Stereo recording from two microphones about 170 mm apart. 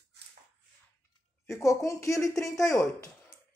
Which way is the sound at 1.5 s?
20° left (ahead or behind).